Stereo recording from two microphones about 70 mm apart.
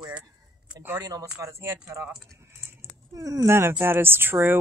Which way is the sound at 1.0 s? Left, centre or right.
Right.